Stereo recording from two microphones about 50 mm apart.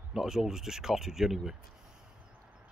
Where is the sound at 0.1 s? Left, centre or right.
Centre.